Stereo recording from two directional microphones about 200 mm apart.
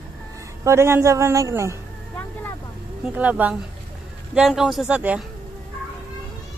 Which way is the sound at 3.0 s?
5° right (ahead or behind).